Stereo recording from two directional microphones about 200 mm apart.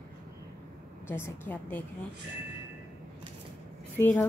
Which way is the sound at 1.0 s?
10° left (ahead or behind).